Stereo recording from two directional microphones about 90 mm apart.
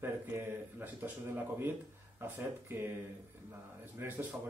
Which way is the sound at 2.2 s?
25° right (ahead or behind).